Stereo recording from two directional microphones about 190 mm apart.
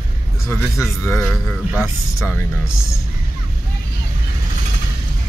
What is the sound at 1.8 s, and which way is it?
Speech, 15° left (ahead or behind).